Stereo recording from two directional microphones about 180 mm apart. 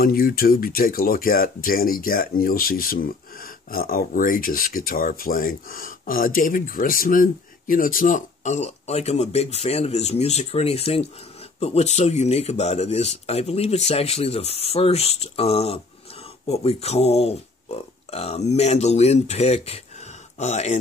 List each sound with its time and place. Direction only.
0.0 s speech: 55° left (ahead or behind); by 20.7 s 40° left (ahead or behind)